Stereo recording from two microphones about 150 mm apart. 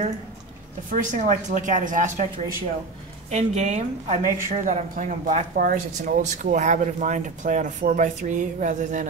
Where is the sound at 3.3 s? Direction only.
50° right (ahead or behind).